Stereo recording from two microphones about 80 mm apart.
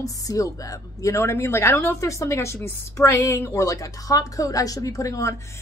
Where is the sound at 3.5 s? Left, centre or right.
Left.